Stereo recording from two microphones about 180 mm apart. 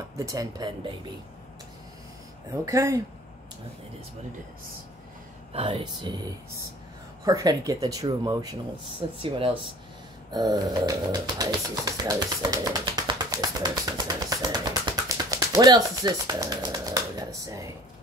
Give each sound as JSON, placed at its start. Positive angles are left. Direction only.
{"t": 0.2, "sound": "speech", "side_deg": -20}
{"t": 2.6, "sound": "speech", "side_deg": -15}
{"t": 5.5, "sound": "speech", "side_deg": -30}
{"t": 7.2, "sound": "speech", "side_deg": -20}
{"t": 10.3, "sound": "bird", "side_deg": -20}